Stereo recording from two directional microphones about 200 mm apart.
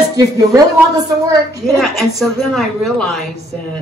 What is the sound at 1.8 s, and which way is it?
Speech, centre (ahead or behind).